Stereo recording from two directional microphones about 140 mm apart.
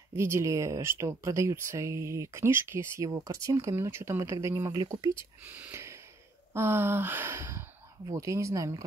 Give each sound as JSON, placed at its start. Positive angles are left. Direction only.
{"t": 0.1, "sound": "speech", "side_deg": -20}
{"t": 6.5, "sound": "a sound", "side_deg": -15}
{"t": 8.1, "sound": "speech", "side_deg": -20}